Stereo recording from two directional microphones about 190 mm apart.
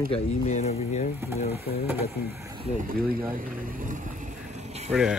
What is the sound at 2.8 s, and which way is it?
Speech, 50° right (ahead or behind).